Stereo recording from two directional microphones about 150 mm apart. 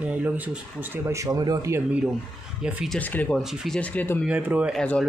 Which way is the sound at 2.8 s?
10° left (ahead or behind).